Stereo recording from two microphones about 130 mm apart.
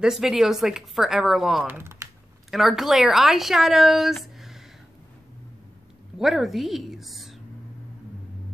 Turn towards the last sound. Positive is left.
turn(degrees=0)  # may be behind; listen again after turning